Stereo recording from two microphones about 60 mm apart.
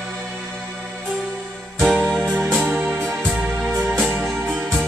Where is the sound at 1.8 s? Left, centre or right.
Centre.